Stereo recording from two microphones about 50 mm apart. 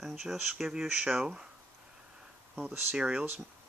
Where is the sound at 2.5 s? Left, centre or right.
Right.